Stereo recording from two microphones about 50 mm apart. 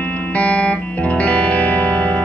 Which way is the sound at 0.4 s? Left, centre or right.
Left.